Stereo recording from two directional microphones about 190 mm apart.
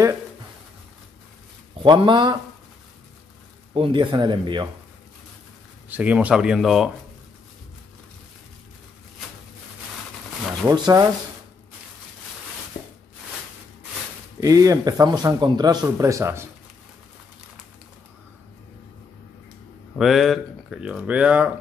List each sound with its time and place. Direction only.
1.8 s speech: 25° right (ahead or behind)
3.7 s speech: 25° right (ahead or behind)
5.9 s speech: 10° right (ahead or behind)
10.7 s speech: 20° right (ahead or behind)
14.4 s speech: 20° right (ahead or behind)
20.0 s speech: centre (ahead or behind)